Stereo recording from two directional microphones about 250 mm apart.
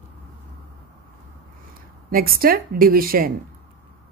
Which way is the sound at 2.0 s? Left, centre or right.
Right.